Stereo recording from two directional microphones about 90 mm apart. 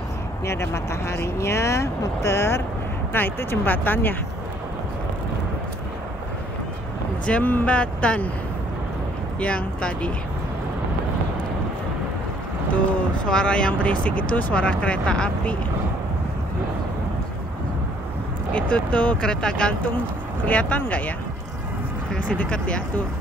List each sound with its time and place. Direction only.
0.5 s speech: 30° left (ahead or behind)
7.2 s speech: 15° left (ahead or behind)
9.4 s speech: 10° left (ahead or behind)
13.2 s speech: 10° left (ahead or behind)
18.5 s speech: 15° left (ahead or behind)
22.1 s speech: 10° left (ahead or behind)